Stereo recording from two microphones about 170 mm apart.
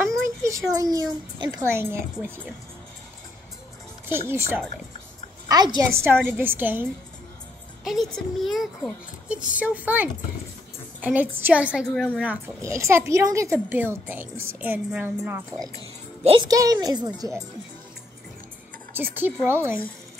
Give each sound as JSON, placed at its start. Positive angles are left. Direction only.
{"t": 0.4, "sound": "speech", "side_deg": -20}
{"t": 4.1, "sound": "a woman's voice", "side_deg": -15}
{"t": 6.0, "sound": "a woman's voice", "side_deg": -10}
{"t": 7.8, "sound": "a child's voice", "side_deg": 0}
{"t": 12.6, "sound": "a woman's voice", "side_deg": -15}
{"t": 16.3, "sound": "a woman's voice", "side_deg": -25}
{"t": 18.9, "sound": "a woman's voice", "side_deg": -10}